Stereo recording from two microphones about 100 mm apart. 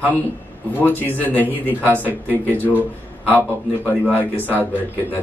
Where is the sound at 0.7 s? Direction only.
20° left (ahead or behind).